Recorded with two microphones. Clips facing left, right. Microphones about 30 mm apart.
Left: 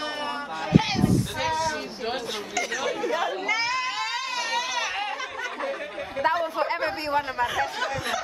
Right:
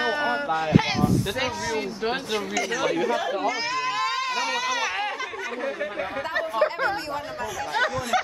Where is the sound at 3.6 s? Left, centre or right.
Centre.